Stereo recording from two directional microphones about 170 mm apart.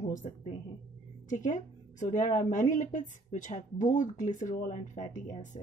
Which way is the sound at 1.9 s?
45° left (ahead or behind).